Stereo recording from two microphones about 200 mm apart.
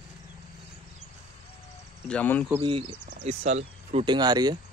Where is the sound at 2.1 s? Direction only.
5° left (ahead or behind).